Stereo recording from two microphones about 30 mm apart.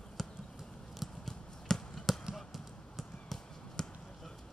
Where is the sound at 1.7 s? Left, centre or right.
Centre.